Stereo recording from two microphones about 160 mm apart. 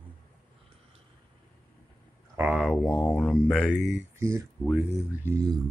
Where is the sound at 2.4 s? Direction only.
5° right (ahead or behind).